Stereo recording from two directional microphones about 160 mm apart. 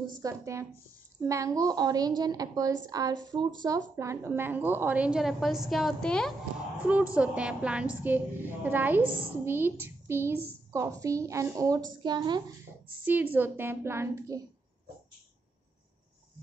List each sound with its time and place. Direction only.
0.2 s a woman's voice: 20° right (ahead or behind); by 6.3 s 5° left (ahead or behind)
6.8 s a woman's voice: 10° right (ahead or behind)
9.0 s a woman's voice: 30° right (ahead or behind)
9.4 s a woman's voice: 15° right (ahead or behind)
13.0 s a woman's voice: 10° right (ahead or behind)